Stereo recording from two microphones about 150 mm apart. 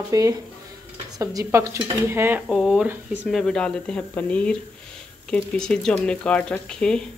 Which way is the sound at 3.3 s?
5° left (ahead or behind).